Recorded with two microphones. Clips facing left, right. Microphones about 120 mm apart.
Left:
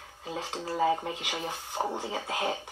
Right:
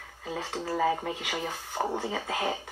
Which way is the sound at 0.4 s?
15° left (ahead or behind).